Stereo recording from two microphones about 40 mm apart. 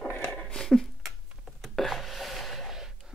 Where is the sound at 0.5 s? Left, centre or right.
Centre.